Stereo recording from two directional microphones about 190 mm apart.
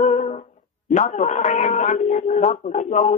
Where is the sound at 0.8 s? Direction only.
40° left (ahead or behind).